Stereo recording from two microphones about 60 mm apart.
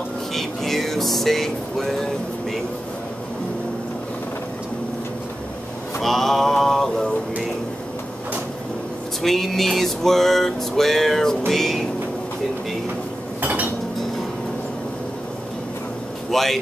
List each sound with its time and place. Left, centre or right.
0.3 s music: centre
5.9 s mantra: centre
9.2 s a sound: centre
13.4 s cutlery: right
16.3 s speech: centre